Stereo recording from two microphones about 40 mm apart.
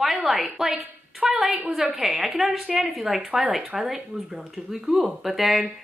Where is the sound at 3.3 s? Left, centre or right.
Centre.